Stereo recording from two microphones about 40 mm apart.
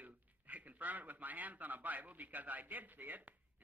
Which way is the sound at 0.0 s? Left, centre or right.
Right.